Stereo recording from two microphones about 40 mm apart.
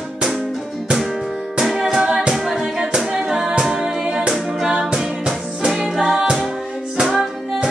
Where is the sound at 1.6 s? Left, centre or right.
Centre.